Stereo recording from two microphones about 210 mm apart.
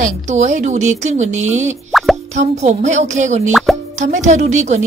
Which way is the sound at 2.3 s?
35° right (ahead or behind).